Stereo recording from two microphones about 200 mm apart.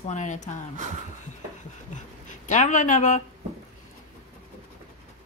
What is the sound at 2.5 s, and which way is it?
Speech, 40° left (ahead or behind).